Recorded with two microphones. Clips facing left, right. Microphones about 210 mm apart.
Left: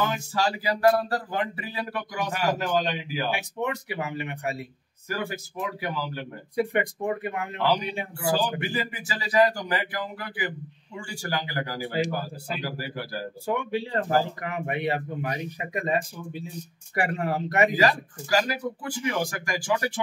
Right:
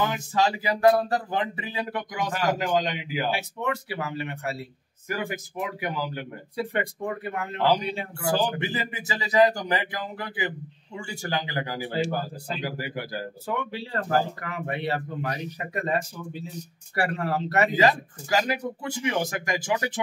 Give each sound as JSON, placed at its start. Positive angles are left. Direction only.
{"t": 0.0, "sound": "speech", "side_deg": -20}
{"t": 3.3, "sound": "speech", "side_deg": 15}
{"t": 5.2, "sound": "speech", "side_deg": -20}
{"t": 6.5, "sound": "speech", "side_deg": 15}
{"t": 8.5, "sound": "speech", "side_deg": -20}
{"t": 11.9, "sound": "speech", "side_deg": 10}
{"t": 12.6, "sound": "speech", "side_deg": -15}
{"t": 13.9, "sound": "speech", "side_deg": 25}
{"t": 17.7, "sound": "speech", "side_deg": -20}